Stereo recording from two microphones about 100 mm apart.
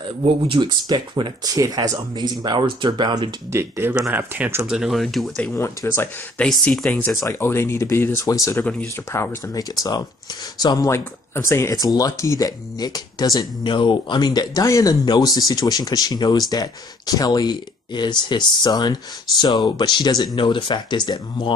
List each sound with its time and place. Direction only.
0.2 s speech: 55° right (ahead or behind)
1.4 s speech: 40° right (ahead or behind)
3.5 s speech: 25° right (ahead or behind)
4.6 s speech: 5° right (ahead or behind)
5.5 s speech: 25° left (ahead or behind)
7.2 s speech: 25° left (ahead or behind)
9.5 s speech: 40° left (ahead or behind)
10.9 s speech: 30° left (ahead or behind); by 20.2 s 45° left (ahead or behind)
20.3 s speech: 55° left (ahead or behind)